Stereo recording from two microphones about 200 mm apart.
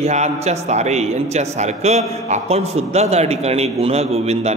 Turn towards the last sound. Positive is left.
turn(degrees=-30)  # may be behind; listen again after turning